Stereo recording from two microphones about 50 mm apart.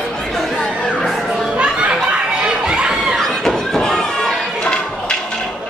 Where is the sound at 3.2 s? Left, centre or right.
Centre.